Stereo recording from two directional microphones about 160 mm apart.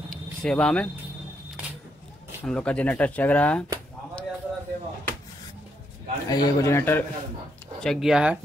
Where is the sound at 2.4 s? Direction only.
10° left (ahead or behind).